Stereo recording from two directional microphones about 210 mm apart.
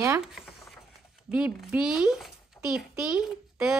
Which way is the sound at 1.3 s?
5° right (ahead or behind).